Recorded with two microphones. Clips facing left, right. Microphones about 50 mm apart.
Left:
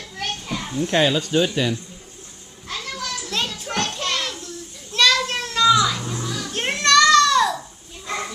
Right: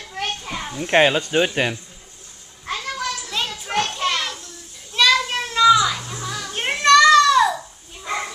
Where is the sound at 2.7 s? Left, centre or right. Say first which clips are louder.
Right 4 dB; right.